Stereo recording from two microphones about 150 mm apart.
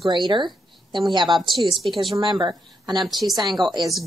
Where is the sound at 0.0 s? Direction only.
30° right (ahead or behind).